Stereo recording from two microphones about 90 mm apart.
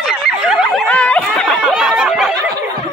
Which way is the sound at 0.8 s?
15° left (ahead or behind).